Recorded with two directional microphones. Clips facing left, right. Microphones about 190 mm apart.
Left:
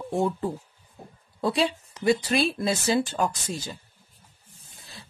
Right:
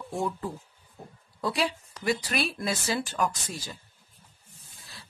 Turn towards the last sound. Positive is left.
turn(degrees=25)  # may be behind; listen again after turning